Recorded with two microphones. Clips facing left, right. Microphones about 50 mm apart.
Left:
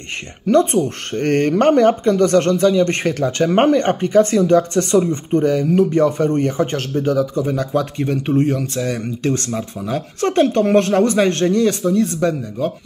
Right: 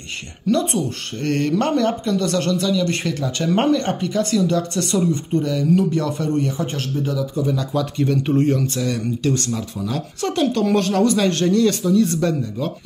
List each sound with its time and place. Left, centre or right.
0.7 s speech: left
8.5 s speech: centre
9.3 s speech: left
9.8 s speech: centre
10.2 s speech: left
12.0 s speech: centre